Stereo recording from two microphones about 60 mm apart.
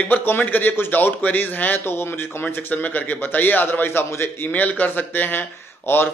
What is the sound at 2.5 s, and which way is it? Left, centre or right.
A man's voice, left.